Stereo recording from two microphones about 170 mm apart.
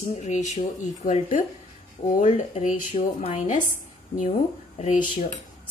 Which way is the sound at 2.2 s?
40° left (ahead or behind).